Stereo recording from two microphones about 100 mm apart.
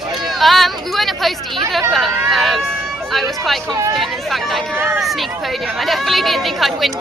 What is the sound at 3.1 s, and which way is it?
Vehicle, centre (ahead or behind).